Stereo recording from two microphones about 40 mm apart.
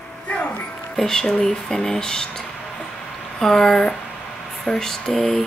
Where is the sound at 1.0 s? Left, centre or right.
Centre.